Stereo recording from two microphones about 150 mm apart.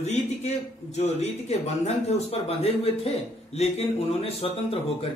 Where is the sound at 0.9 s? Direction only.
45° left (ahead or behind).